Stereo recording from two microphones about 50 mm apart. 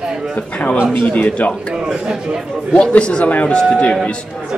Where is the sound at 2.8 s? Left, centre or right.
Left.